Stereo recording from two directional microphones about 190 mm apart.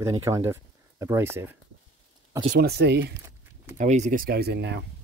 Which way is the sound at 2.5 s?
60° right (ahead or behind).